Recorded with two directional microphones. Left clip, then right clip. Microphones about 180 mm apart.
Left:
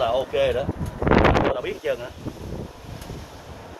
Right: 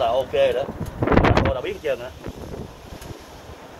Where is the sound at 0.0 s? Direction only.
5° right (ahead or behind).